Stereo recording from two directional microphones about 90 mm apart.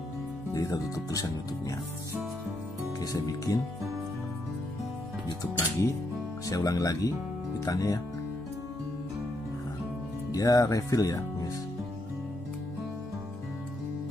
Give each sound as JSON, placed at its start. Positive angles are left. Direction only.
{"t": 0.5, "sound": "speech", "side_deg": 40}
{"t": 3.0, "sound": "speech", "side_deg": 40}
{"t": 5.6, "sound": "speech", "side_deg": 30}
{"t": 6.4, "sound": "speech", "side_deg": 40}
{"t": 10.3, "sound": "speech", "side_deg": 40}